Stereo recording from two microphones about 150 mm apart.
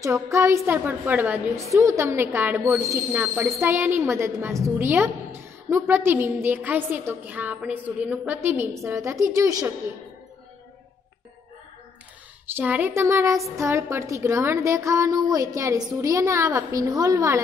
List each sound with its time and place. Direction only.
0.0 s a woman's voice: 20° right (ahead or behind)
12.5 s a woman's voice: 10° right (ahead or behind)